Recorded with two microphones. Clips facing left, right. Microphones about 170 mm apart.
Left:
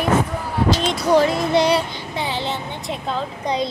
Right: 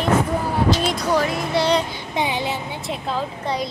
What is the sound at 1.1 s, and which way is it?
Music, 20° left (ahead or behind).